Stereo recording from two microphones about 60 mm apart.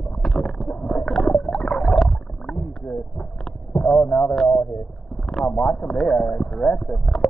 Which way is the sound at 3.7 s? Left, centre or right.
Centre.